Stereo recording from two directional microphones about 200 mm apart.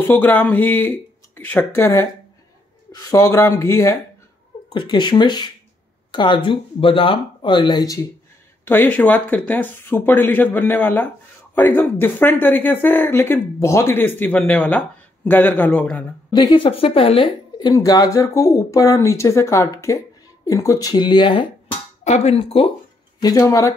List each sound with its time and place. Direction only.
0.0 s speech: 10° left (ahead or behind)
4.7 s speech: 25° left (ahead or behind); by 16.1 s 5° left (ahead or behind)
16.3 s speech: 25° left (ahead or behind)
23.2 s speech: 20° left (ahead or behind)